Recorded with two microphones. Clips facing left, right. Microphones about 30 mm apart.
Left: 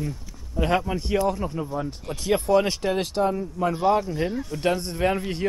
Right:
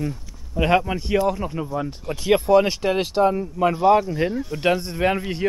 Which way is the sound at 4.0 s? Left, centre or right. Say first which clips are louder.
Right 3 dB; centre.